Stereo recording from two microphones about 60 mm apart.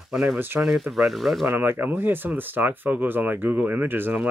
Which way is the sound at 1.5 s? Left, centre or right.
Right.